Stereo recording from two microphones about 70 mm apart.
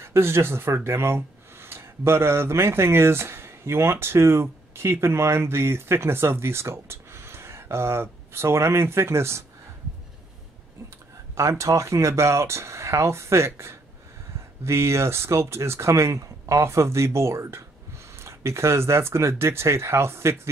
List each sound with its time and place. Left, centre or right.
0.0 s speech: right
11.3 s speech: right